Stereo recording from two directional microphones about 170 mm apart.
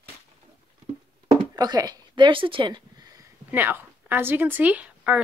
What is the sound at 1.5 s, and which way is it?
Speech, 20° right (ahead or behind).